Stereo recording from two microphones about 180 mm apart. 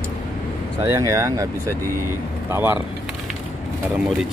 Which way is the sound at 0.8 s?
15° right (ahead or behind).